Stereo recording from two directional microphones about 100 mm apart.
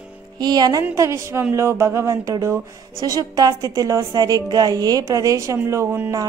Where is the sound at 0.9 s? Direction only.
30° right (ahead or behind).